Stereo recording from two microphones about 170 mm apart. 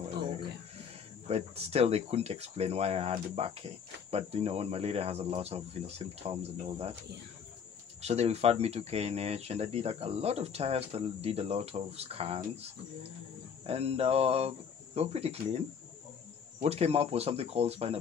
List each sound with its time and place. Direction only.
1.2 s speech: 35° right (ahead or behind)
8.0 s speech: 40° right (ahead or behind)
13.7 s speech: 35° right (ahead or behind)
16.6 s speech: 40° right (ahead or behind)